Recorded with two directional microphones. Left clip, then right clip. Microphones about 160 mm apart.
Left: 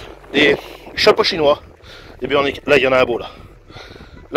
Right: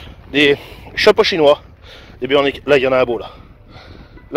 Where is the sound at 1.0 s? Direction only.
45° right (ahead or behind).